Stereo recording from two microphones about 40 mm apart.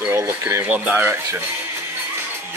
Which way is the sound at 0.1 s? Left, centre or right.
Right.